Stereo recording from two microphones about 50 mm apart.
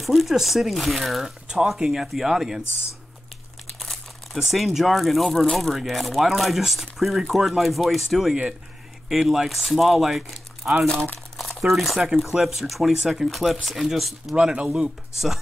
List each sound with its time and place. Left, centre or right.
0.0 s speech: centre
3.8 s crumpling: centre
4.4 s speech: centre
14.3 s speech: right